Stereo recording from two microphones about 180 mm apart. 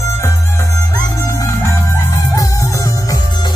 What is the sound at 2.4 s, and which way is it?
Music, 15° left (ahead or behind).